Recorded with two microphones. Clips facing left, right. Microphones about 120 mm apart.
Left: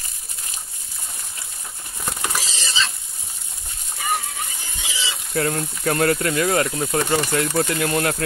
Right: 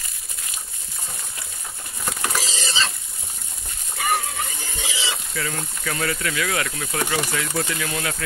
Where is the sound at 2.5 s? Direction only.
40° right (ahead or behind).